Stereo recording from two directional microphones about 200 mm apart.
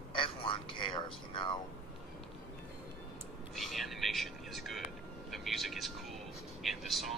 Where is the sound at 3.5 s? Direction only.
Centre (ahead or behind).